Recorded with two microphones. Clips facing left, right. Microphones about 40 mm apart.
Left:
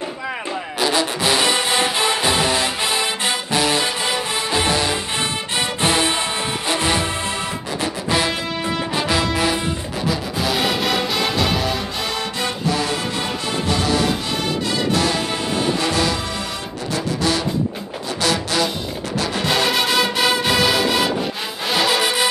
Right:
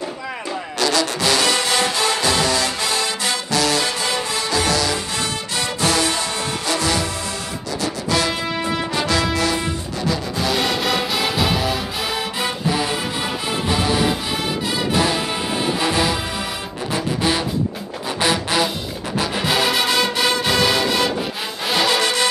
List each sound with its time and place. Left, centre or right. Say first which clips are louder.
0.7 s music: even; centre
8.3 s music: right 1 dB; centre
10.0 s music: even; centre
12.4 s music: even; centre
19.4 s music: even; centre